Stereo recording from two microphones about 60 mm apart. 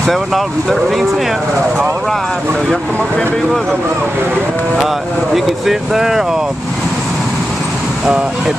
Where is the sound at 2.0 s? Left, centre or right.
Centre.